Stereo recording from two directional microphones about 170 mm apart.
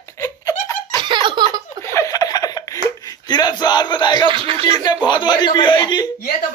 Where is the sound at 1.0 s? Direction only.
30° right (ahead or behind).